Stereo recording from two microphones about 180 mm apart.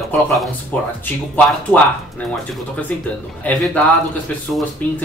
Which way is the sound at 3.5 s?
10° left (ahead or behind).